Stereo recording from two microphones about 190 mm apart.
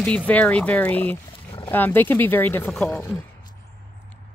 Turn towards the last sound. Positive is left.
turn(degrees=5)  # may be behind; listen again after turning